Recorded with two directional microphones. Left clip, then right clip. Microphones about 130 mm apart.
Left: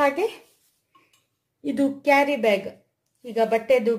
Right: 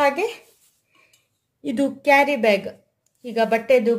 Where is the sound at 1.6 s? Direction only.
20° right (ahead or behind).